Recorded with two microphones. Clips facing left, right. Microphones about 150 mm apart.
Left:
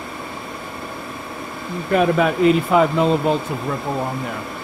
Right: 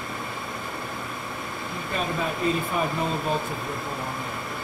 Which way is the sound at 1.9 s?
75° left (ahead or behind).